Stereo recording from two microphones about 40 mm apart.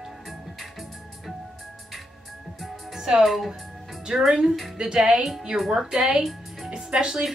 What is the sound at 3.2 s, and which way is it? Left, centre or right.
Speech, centre.